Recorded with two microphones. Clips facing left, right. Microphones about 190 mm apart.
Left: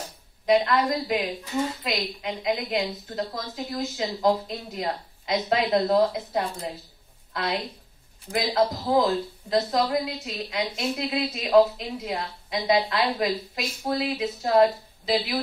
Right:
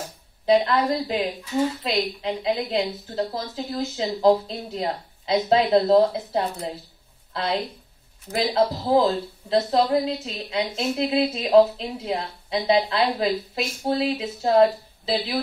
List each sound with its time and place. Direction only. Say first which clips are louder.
0.5 s a woman's voice: right 2 dB; 30° right (ahead or behind)